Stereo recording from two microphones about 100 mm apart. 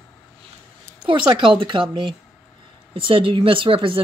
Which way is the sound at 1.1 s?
55° right (ahead or behind).